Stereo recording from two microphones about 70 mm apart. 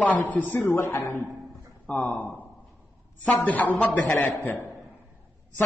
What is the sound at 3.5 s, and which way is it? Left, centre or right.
Speech, left.